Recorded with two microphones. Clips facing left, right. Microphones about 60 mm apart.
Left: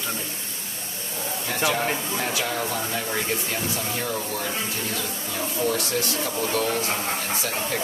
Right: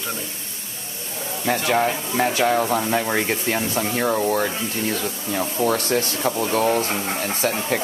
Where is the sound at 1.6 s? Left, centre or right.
Right.